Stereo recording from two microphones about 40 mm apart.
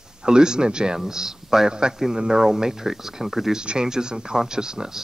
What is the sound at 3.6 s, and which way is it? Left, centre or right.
A man's voice, right.